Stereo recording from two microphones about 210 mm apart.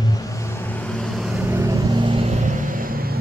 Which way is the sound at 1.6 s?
20° right (ahead or behind).